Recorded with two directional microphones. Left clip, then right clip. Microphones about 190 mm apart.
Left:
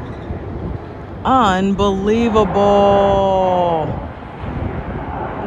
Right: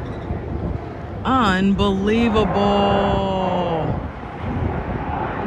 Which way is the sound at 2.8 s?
20° right (ahead or behind).